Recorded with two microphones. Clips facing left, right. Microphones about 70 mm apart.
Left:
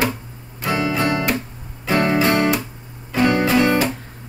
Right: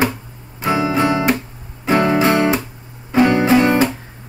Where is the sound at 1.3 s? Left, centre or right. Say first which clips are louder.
Left 2 dB; right.